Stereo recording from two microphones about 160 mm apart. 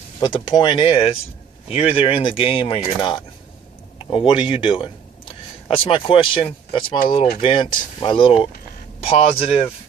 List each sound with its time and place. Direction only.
0.2 s speech: 30° left (ahead or behind)